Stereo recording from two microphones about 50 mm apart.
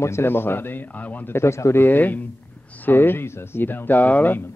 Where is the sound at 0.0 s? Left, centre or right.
Left.